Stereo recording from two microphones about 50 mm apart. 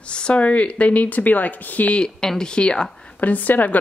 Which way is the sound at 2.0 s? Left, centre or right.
Centre.